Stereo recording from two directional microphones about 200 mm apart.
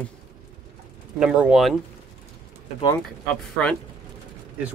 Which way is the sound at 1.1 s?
5° right (ahead or behind).